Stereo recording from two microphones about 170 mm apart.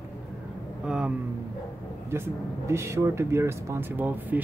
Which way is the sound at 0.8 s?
5° right (ahead or behind).